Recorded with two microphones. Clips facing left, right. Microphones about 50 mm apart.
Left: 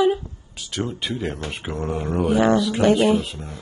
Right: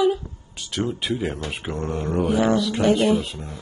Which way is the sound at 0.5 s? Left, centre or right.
Centre.